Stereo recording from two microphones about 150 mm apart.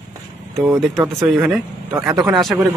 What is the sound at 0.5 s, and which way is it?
Speech, 5° right (ahead or behind).